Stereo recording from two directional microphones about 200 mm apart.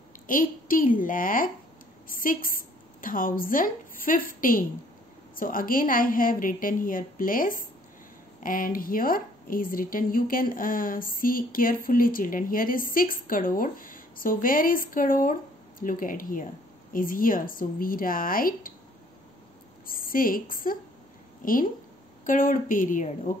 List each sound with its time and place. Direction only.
0.3 s a woman's voice: 45° left (ahead or behind)
19.9 s a woman's voice: 45° left (ahead or behind)